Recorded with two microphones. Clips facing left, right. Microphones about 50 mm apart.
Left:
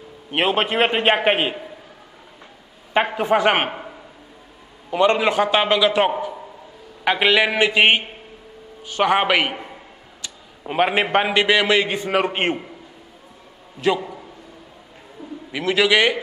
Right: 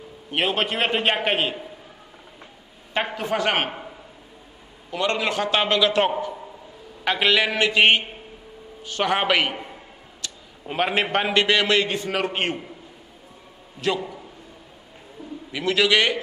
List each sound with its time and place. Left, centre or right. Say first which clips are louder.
0.3 s a man's voice: left 4 dB; centre
2.9 s a man's voice: left 7 dB; centre
4.9 s a man's voice: left 7 dB; centre
13.7 s a man's voice: left 4 dB; centre
15.2 s a sound: left 2 dB; centre
15.5 s a man's voice: left 2 dB; centre